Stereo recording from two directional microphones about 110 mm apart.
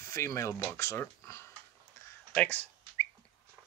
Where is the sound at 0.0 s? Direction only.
30° left (ahead or behind).